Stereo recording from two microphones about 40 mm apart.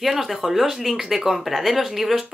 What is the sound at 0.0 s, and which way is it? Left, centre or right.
Speech, centre.